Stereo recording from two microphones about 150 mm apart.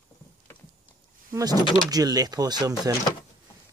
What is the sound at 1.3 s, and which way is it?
Speech, 25° right (ahead or behind).